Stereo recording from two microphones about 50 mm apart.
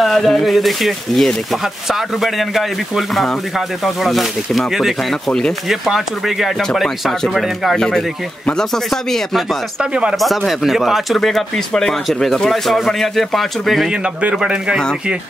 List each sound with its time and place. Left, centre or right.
0.0 s speech: centre
9.8 s speech: right
10.1 s speech: centre
14.3 s speech: centre